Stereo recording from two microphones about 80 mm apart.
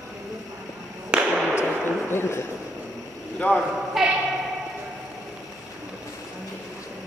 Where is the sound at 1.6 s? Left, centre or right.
Left.